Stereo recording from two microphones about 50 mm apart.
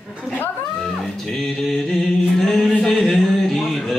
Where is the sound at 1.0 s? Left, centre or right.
Centre.